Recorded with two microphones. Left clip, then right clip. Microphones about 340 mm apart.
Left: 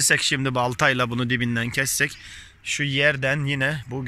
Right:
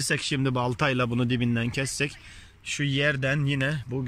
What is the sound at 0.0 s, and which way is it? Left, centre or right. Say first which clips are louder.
Speech: left 7 dB; centre.